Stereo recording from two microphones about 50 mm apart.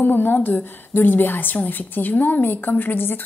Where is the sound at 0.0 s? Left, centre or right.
Left.